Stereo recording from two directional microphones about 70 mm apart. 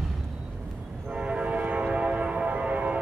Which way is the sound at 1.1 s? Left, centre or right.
Centre.